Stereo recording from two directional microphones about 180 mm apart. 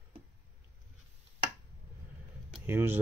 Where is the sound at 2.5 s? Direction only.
10° right (ahead or behind).